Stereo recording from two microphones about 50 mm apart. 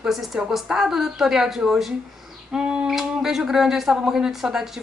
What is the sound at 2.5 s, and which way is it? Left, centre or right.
Speech, centre.